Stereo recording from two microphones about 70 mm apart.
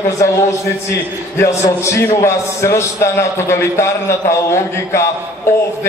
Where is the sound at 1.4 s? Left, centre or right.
Left.